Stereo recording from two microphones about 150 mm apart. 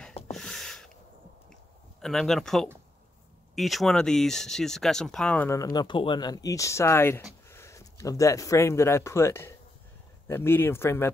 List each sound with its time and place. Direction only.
0.0 s a sound: 5° left (ahead or behind)
3.5 s speech: centre (ahead or behind)
5.6 s speech: 25° left (ahead or behind)